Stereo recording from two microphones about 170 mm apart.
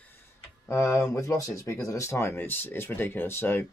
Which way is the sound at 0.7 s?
15° left (ahead or behind).